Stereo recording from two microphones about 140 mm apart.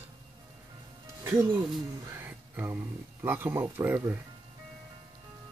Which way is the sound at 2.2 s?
15° right (ahead or behind).